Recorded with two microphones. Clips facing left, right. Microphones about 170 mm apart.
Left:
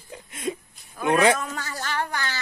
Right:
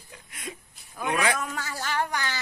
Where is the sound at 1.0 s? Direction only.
25° left (ahead or behind).